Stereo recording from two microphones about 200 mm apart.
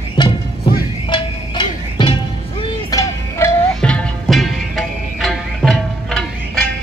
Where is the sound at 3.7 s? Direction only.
5° left (ahead or behind).